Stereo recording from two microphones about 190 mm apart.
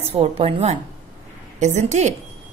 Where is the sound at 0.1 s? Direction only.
30° right (ahead or behind).